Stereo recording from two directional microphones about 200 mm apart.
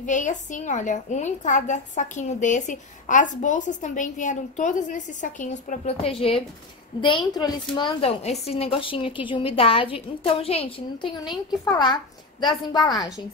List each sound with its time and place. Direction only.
0.0 s a woman's voice: 40° left (ahead or behind); by 13.1 s 20° left (ahead or behind)